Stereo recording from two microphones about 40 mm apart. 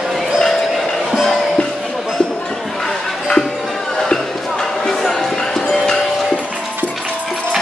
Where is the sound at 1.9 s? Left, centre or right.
Centre.